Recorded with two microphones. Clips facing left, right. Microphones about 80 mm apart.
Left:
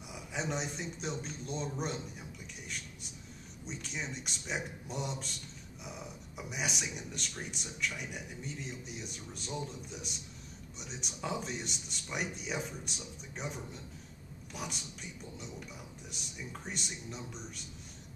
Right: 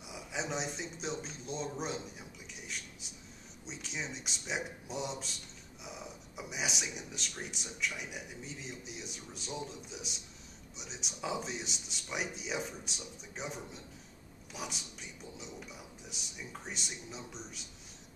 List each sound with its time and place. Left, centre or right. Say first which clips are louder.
0.1 s speech: left 1 dB; centre
3.6 s speech: left 1 dB; centre
16.1 s speech: left 1 dB; centre